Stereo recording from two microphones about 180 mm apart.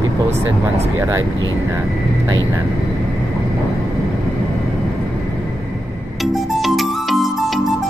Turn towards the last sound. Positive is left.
turn(degrees=0)  # may be behind; listen again after turning